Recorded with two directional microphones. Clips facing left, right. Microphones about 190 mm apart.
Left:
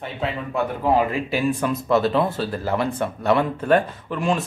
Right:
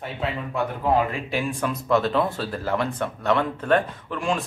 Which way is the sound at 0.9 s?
5° left (ahead or behind).